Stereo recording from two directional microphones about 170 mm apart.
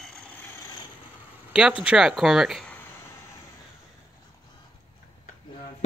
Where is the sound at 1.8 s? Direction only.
5° right (ahead or behind).